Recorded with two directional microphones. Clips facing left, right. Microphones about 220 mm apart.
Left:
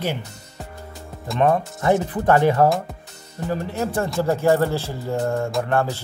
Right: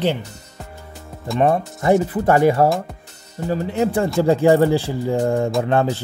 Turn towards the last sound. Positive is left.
turn(degrees=-20)  # may be behind; listen again after turning